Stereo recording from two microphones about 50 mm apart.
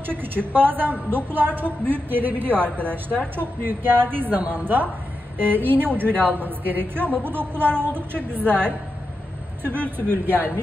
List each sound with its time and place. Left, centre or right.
0.0 s a woman's voice: right
2.6 s a woman's voice: left
3.3 s a woman's voice: right
9.6 s a woman's voice: right